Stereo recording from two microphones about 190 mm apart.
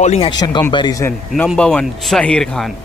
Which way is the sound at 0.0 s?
35° left (ahead or behind).